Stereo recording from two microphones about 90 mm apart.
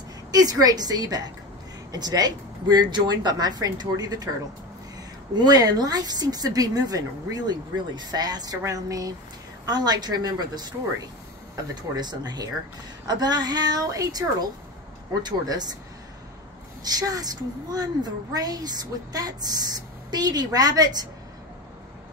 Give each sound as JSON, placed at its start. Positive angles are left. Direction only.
{"t": 0.3, "sound": "a woman's voice", "side_deg": -45}
{"t": 5.3, "sound": "a woman's voice", "side_deg": -50}
{"t": 16.8, "sound": "a woman's voice", "side_deg": -45}